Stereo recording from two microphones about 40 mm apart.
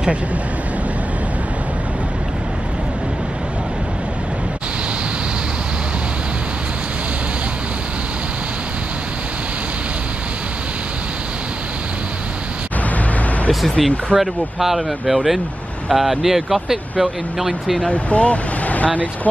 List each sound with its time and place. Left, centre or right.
13.7 s speech: centre
14.1 s speech: centre
17.9 s speech: left